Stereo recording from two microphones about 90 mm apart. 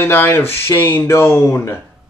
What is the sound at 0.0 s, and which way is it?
Speech, 25° left (ahead or behind).